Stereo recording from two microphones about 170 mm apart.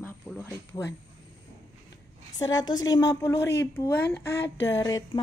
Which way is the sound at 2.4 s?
25° left (ahead or behind).